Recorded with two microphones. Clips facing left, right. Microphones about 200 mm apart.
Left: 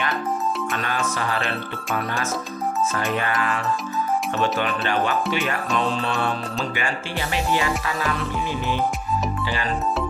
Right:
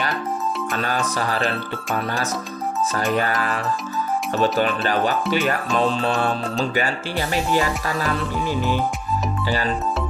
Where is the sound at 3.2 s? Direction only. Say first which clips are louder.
Right 2 dB; 40° right (ahead or behind).